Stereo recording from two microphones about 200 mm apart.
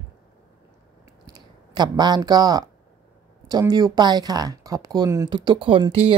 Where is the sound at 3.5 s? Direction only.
20° right (ahead or behind).